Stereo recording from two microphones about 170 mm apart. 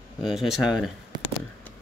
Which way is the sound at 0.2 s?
Centre (ahead or behind).